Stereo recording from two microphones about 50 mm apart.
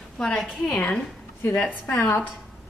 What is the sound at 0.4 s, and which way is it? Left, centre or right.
Speech, centre.